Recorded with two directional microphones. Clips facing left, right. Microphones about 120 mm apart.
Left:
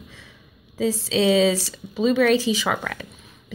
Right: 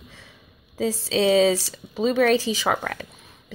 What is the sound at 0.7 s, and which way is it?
Speech, 45° right (ahead or behind).